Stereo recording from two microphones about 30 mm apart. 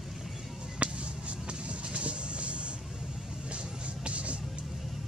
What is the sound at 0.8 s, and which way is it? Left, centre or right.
Music, right.